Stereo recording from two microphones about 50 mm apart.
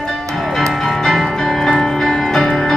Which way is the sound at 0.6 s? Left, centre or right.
Centre.